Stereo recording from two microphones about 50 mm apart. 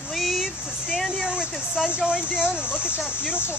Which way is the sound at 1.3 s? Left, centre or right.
Centre.